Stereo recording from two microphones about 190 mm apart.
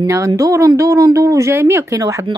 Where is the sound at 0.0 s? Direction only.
15° right (ahead or behind).